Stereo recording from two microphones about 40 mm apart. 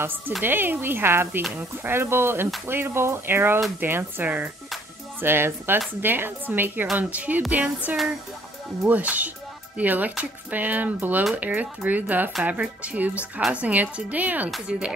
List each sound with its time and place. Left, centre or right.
0.4 s speech: right
2.6 s speech: right
3.8 s speech: right
7.0 s a woman's voice: right
14.7 s speech: centre